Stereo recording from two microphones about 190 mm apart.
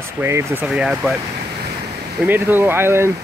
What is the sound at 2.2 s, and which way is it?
Speech, 10° right (ahead or behind).